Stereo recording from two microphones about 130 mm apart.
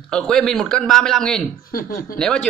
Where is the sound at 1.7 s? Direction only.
90° left.